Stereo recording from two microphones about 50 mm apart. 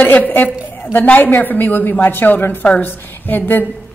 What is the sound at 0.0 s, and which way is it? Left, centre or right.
A woman's voice, left.